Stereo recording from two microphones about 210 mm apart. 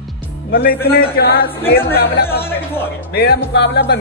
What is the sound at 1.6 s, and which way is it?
Speech, 10° left (ahead or behind).